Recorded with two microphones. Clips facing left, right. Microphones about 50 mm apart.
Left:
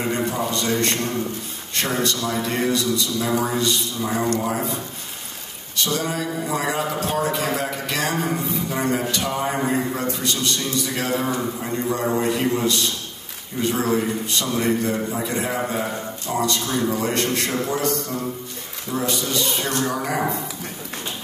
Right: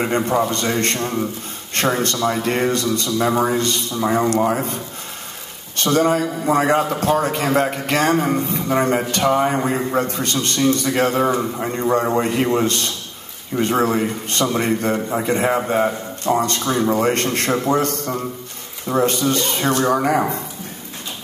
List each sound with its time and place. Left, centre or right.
0.0 s a man's voice: right
5.8 s a man's voice: right
12.0 s a man's voice: right
12.3 s a man's voice: right